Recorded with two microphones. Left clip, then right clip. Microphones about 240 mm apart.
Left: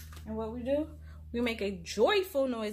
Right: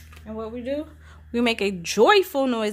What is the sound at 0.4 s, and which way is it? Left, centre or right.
A woman's voice, right.